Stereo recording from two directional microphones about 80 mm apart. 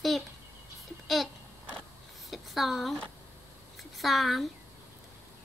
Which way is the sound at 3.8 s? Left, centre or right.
Centre.